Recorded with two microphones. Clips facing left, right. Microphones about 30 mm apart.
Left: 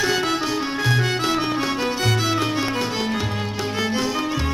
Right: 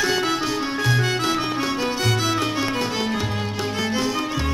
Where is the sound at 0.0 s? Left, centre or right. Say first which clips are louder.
Even; centre.